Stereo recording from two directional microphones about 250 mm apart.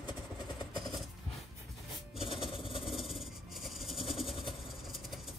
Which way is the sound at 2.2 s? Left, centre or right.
Left.